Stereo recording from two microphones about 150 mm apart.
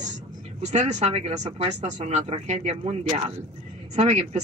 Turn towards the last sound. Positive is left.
turn(degrees=-50)  # may be behind; listen again after turning